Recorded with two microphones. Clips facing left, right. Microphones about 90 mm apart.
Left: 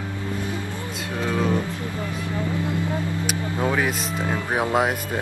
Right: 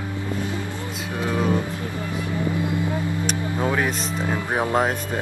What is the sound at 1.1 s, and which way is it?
Speech, 15° right (ahead or behind).